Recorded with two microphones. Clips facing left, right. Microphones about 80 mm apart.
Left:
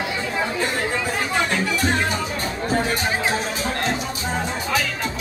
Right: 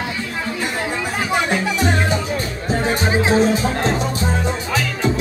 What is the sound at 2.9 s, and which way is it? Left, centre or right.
Music, right.